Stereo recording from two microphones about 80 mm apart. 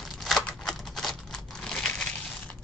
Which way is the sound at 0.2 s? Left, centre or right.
Centre.